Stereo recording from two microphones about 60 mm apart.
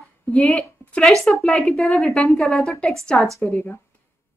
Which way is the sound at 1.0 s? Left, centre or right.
Centre.